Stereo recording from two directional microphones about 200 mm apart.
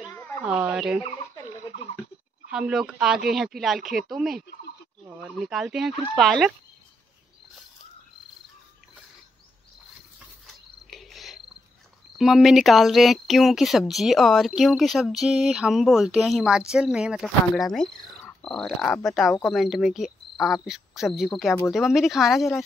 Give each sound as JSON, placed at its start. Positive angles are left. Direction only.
{"t": 0.4, "sound": "speech", "side_deg": -5}
{"t": 2.5, "sound": "speech", "side_deg": -5}
{"t": 10.4, "sound": "cricket", "side_deg": 0}
{"t": 12.2, "sound": "speech", "side_deg": 0}